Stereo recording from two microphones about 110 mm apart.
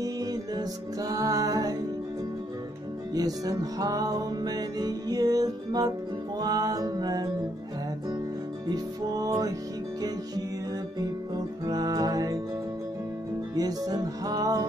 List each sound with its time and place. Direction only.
0.0 s music: 35° right (ahead or behind)
3.2 s music: 35° right (ahead or behind)
8.6 s music: 35° right (ahead or behind)
11.0 s music: 35° right (ahead or behind)
13.6 s music: 35° right (ahead or behind)